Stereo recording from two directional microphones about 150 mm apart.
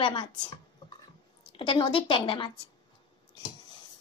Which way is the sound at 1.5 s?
35° left (ahead or behind).